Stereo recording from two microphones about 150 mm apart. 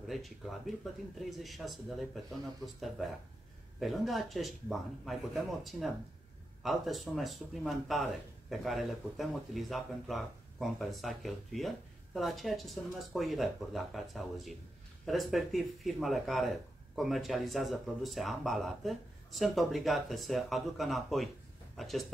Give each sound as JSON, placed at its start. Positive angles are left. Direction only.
{"t": 0.1, "sound": "speech", "side_deg": 0}